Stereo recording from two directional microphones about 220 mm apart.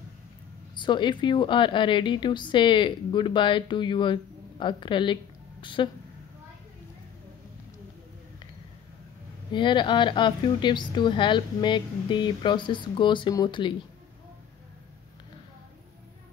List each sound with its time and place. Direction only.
0.7 s a woman's voice: 20° left (ahead or behind)
9.5 s a woman's voice: 20° left (ahead or behind)